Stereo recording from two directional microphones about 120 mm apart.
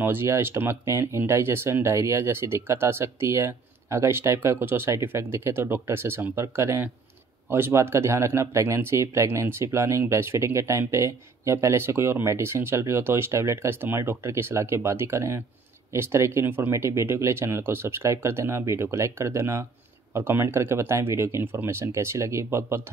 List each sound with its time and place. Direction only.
0.0 s speech: 20° right (ahead or behind)